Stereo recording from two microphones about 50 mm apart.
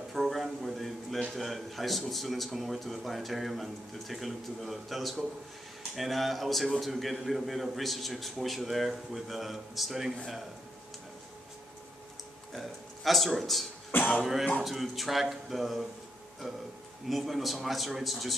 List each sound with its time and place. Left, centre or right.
0.1 s a sound: centre
1.3 s speech: centre
12.5 s speech: centre
13.9 s speech: left
14.6 s speech: centre
16.4 s speech: centre
17.1 s speech: centre